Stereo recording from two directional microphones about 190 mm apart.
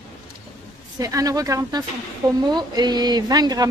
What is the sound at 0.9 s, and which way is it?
A woman's voice, 20° right (ahead or behind).